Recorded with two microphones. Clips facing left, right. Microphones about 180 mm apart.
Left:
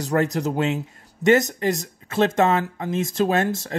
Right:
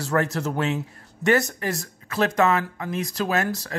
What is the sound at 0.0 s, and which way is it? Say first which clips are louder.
Speech: left 2 dB; 20° left (ahead or behind).